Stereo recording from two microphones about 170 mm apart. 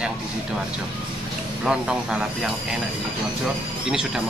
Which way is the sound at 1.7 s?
5° right (ahead or behind).